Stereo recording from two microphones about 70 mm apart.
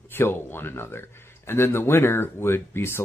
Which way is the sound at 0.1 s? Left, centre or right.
Left.